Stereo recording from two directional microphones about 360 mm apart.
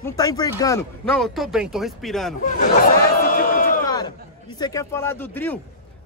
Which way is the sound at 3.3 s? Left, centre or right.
Left.